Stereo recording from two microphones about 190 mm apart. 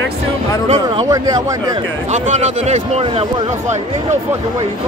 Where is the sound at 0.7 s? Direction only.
30° right (ahead or behind).